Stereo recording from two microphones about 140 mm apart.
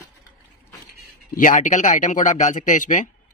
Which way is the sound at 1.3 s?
70° left (ahead or behind).